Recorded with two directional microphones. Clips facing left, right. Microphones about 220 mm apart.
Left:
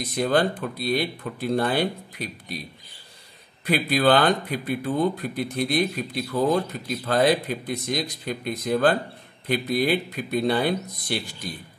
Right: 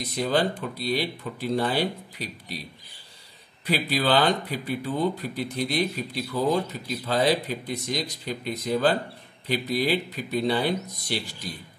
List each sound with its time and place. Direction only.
0.2 s speech: 50° left (ahead or behind)
3.6 s speech: 55° left (ahead or behind)